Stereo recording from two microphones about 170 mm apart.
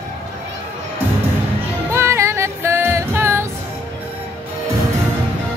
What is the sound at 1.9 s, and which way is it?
Music, 15° right (ahead or behind).